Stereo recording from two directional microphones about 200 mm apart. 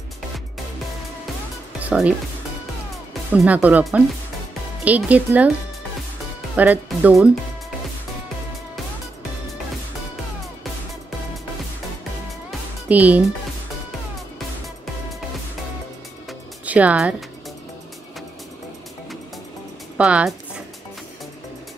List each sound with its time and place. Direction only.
1.8 s speech: 5° right (ahead or behind)
3.3 s speech: 5° right (ahead or behind)
6.5 s speech: 10° right (ahead or behind)
12.4 s music: 10° right (ahead or behind)
16.3 s music: 5° right (ahead or behind)
20.0 s speech: 5° right (ahead or behind)